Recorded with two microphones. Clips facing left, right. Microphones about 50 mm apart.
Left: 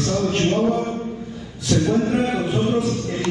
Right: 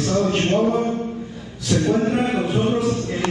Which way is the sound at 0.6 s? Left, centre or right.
Centre.